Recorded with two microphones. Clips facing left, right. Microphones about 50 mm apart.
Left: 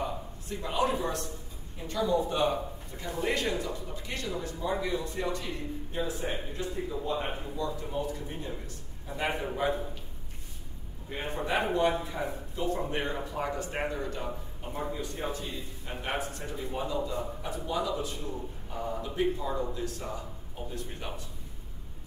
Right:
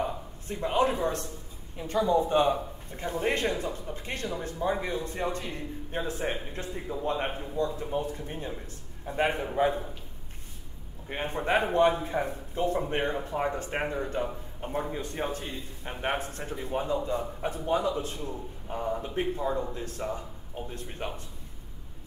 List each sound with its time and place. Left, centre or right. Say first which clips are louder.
0.0 s a man's voice: right 2 dB; right
11.1 s a man's voice: right 4 dB; right